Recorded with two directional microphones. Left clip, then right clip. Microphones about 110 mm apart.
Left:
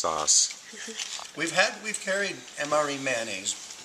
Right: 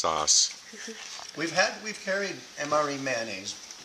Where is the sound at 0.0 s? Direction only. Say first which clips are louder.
Right 1 dB; 10° right (ahead or behind).